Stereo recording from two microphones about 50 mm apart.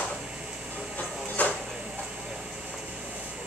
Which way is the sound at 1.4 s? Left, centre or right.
Left.